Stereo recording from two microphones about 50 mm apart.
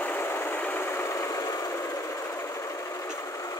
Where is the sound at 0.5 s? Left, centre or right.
Left.